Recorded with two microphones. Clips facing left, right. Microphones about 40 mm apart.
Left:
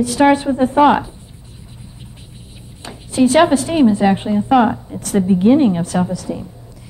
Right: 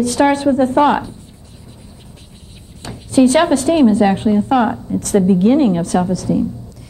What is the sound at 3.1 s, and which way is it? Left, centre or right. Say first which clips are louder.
A woman's voice: even; centre.